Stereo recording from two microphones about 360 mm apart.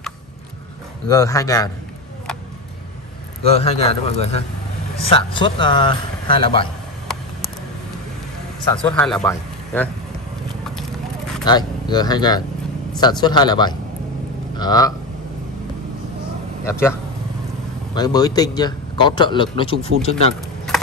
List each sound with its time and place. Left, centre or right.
1.0 s a man's voice: centre
3.5 s a man's voice: centre
8.7 s speech: centre
11.4 s a man's voice: centre
17.9 s a man's voice: centre